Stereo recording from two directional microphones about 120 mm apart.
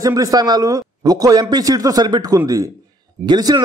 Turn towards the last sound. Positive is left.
turn(degrees=-35)  # may be behind; listen again after turning